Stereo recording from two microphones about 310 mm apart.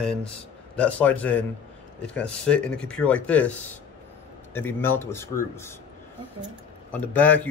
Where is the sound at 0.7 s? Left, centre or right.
Centre.